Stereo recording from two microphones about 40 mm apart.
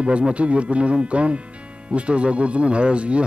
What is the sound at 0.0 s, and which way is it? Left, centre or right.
Speech, right.